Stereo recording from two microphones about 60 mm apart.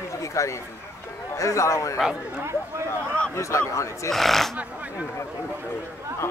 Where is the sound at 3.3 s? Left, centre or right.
Left.